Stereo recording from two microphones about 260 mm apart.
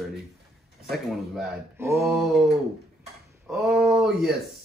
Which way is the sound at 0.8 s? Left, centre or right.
Centre.